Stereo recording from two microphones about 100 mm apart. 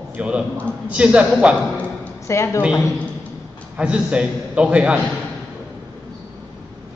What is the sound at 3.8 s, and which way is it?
A man's voice, 10° right (ahead or behind).